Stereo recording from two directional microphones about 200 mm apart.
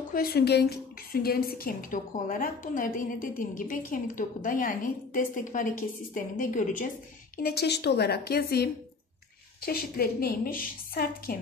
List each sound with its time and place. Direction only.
0.1 s a woman's voice: 50° left (ahead or behind)
7.4 s a woman's voice: 55° left (ahead or behind)